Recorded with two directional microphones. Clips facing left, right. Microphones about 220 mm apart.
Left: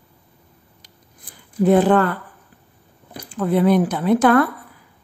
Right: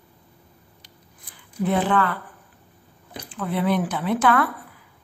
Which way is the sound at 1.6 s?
40° left (ahead or behind).